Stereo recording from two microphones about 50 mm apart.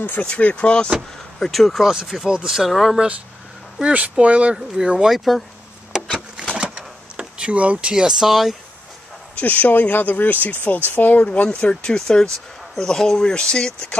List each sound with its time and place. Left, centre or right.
0.0 s speech: left
1.4 s speech: centre
1.9 s speech: centre
2.7 s speech: centre
3.8 s speech: right
4.6 s speech: centre
5.9 s a sound: centre
6.6 s power windows: centre
7.9 s speech: centre
9.4 s speech: left
11.4 s speech: centre